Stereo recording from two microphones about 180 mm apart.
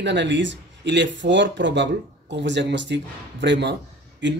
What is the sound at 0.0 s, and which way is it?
Speech, 80° right.